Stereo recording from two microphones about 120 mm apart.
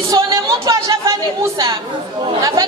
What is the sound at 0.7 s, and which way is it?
Speech, 25° right (ahead or behind).